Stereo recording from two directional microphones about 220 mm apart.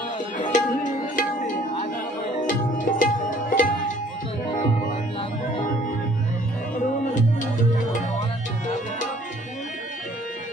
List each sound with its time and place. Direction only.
0.4 s music: 35° left (ahead or behind)
2.4 s tabla: 35° left (ahead or behind)